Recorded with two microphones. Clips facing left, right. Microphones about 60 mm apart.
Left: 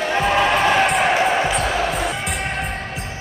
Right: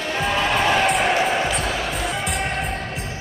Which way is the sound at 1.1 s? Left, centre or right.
Centre.